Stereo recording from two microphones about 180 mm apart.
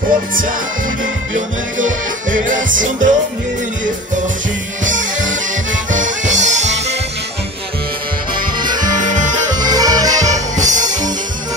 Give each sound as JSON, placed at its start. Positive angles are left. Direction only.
{"t": 1.3, "sound": "music", "side_deg": -45}
{"t": 5.9, "sound": "music", "side_deg": -45}
{"t": 8.4, "sound": "music", "side_deg": -25}
{"t": 9.0, "sound": "music", "side_deg": -45}
{"t": 9.5, "sound": "music", "side_deg": -20}
{"t": 10.2, "sound": "music", "side_deg": -40}